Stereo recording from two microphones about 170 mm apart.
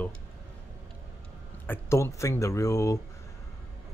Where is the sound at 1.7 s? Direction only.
15° left (ahead or behind).